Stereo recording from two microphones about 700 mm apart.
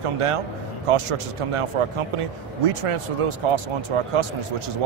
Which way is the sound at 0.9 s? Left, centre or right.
Right.